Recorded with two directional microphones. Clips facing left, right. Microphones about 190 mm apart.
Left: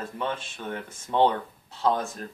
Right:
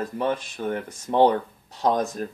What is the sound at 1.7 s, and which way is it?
Speech, 15° right (ahead or behind).